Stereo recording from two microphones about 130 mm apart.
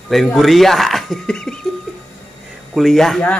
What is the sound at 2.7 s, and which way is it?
Speech, centre (ahead or behind).